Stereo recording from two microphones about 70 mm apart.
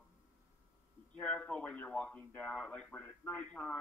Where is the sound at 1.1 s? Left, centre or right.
Centre.